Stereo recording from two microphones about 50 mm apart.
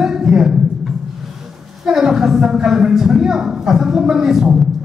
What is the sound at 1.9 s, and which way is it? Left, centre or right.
A woman's voice, centre.